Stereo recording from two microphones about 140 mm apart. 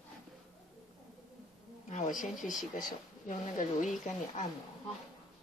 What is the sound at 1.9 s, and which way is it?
Speech, 65° left (ahead or behind).